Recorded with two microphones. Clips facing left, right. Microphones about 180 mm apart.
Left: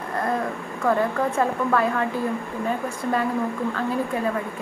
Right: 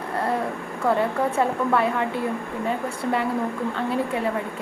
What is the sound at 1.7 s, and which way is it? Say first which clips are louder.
Speech: even; 20° right (ahead or behind).